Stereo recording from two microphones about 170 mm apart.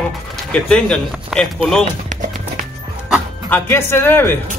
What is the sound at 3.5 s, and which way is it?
Speech, 15° left (ahead or behind).